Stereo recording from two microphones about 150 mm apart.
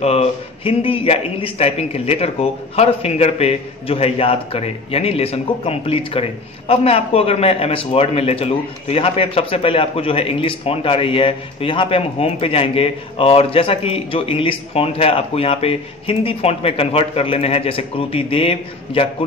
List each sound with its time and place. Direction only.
0.0 s a man's voice: 45° left (ahead or behind)